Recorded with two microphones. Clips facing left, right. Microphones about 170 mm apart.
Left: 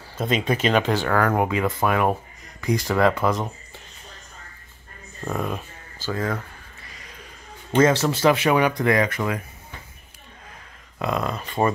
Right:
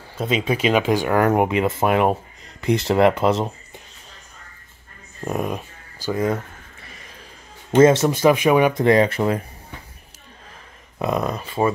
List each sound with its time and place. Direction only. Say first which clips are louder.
0.2 s speech: right 1 dB; 5° right (ahead or behind); by 3.5 s 25° right (ahead or behind)
5.2 s speech: right 3 dB; 15° right (ahead or behind)
7.7 s speech: right 5 dB; 20° right (ahead or behind)
11.0 s speech: right 3 dB; 20° right (ahead or behind)
11.4 s speech: even; 5° right (ahead or behind)